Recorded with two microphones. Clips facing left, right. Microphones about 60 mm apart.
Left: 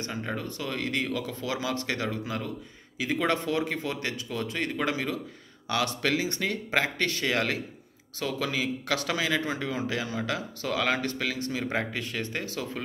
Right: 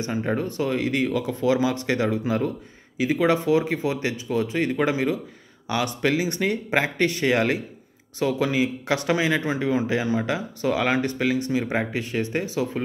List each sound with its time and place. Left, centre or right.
0.0 s speech: right
3.0 s speech: centre